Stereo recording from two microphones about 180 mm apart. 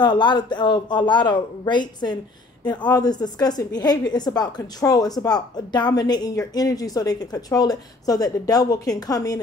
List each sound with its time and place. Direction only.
0.0 s a woman's voice: 25° left (ahead or behind)